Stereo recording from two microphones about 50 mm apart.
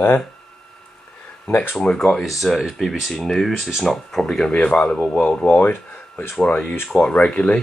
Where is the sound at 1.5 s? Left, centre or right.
Left.